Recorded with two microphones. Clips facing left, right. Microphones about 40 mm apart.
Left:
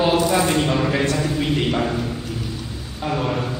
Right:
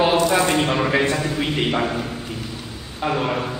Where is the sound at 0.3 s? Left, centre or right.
Centre.